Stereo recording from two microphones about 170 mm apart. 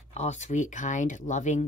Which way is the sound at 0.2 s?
45° left (ahead or behind).